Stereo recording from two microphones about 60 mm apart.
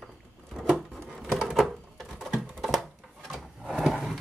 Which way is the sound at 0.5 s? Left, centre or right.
Centre.